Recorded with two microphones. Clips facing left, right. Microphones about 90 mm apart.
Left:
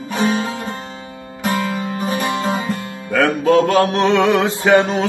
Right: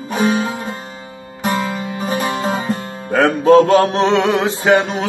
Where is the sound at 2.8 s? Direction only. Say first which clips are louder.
Right 2 dB; 30° right (ahead or behind).